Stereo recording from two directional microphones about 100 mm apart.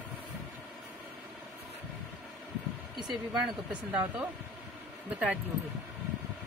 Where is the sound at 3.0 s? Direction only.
5° right (ahead or behind).